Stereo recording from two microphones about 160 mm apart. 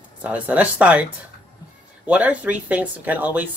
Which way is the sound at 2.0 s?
10° right (ahead or behind).